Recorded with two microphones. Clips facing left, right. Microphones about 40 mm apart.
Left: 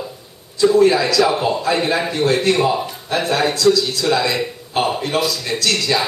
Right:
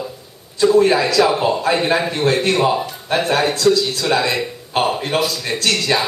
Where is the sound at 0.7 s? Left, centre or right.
Right.